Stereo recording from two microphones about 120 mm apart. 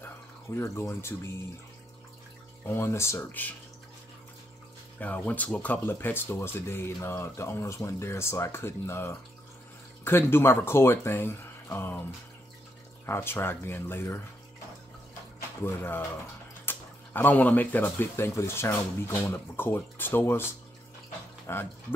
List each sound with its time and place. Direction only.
0.6 s speech: 25° left (ahead or behind)
2.6 s speech: 20° left (ahead or behind)
5.0 s speech: 15° left (ahead or behind)
15.6 s speech: 20° left (ahead or behind)
21.5 s speech: 20° left (ahead or behind)